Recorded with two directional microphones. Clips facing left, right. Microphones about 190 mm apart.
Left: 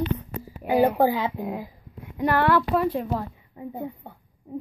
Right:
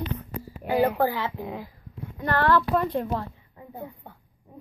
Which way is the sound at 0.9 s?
15° left (ahead or behind).